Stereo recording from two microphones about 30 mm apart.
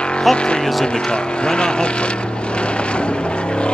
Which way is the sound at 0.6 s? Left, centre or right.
Centre.